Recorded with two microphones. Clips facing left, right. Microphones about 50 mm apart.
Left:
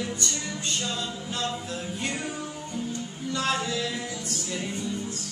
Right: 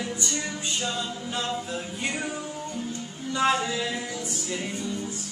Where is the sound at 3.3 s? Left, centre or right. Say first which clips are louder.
Right 4 dB; centre.